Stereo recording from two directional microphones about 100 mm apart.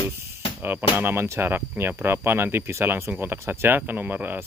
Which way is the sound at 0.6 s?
20° right (ahead or behind).